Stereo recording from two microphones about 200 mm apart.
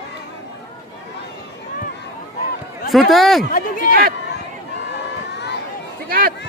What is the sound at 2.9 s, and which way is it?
Speech, centre (ahead or behind).